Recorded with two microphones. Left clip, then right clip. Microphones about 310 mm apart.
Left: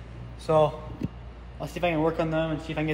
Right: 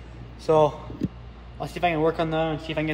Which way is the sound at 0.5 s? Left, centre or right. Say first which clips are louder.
Right 3 dB; right.